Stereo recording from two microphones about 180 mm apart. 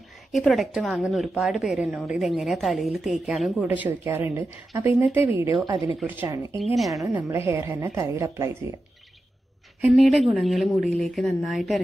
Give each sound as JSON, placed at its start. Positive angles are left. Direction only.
{"t": 0.3, "sound": "a woman's voice", "side_deg": 0}
{"t": 6.6, "sound": "a woman's voice", "side_deg": 0}
{"t": 7.1, "sound": "a woman's voice", "side_deg": -15}
{"t": 9.8, "sound": "a woman's voice", "side_deg": -5}